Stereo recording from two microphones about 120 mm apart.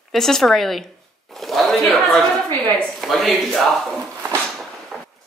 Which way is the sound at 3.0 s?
Centre (ahead or behind).